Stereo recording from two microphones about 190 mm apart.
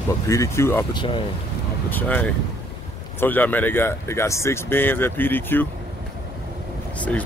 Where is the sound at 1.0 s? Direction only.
25° left (ahead or behind).